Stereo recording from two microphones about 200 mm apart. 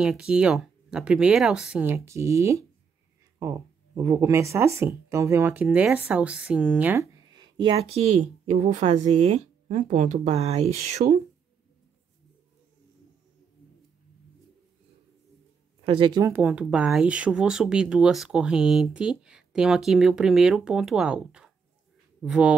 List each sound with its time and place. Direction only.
0.0 s speech: 5° right (ahead or behind)
7.3 s a woman's voice: 25° right (ahead or behind)
15.8 s speech: 25° right (ahead or behind)
16.3 s speech: 10° right (ahead or behind)